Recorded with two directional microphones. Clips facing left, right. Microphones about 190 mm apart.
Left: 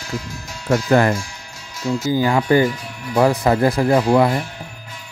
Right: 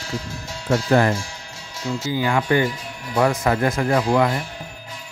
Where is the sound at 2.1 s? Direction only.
35° left (ahead or behind).